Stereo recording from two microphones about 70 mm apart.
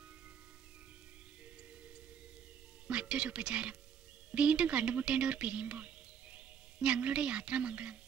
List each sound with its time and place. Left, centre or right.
2.9 s speech: centre